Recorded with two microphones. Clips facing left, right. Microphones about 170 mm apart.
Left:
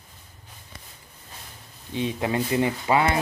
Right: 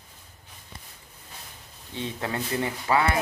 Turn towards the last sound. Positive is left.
turn(degrees=20)  # may be behind; listen again after turning